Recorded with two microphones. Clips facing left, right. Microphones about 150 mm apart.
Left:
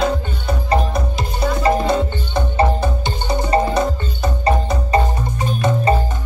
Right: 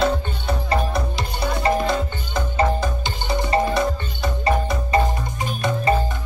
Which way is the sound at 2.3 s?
25° left (ahead or behind).